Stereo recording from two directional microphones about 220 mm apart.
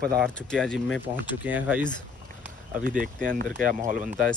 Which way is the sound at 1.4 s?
5° right (ahead or behind).